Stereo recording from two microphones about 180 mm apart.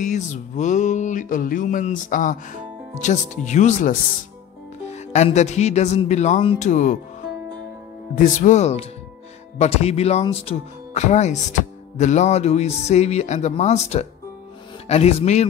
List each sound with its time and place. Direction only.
0.0 s music: 40° left (ahead or behind)
4.8 s speech: 40° left (ahead or behind)
6.6 s music: 40° left (ahead or behind)
8.2 s speech: 45° left (ahead or behind)